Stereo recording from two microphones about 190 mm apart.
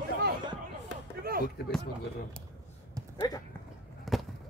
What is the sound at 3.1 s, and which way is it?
Speech, 20° left (ahead or behind).